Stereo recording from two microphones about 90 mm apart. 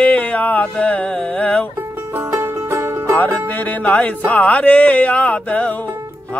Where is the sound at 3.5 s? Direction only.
20° left (ahead or behind).